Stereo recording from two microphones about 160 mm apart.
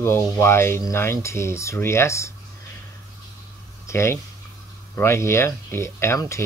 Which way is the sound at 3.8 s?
15° left (ahead or behind).